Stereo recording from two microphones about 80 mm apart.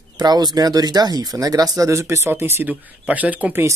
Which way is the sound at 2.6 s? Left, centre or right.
Centre.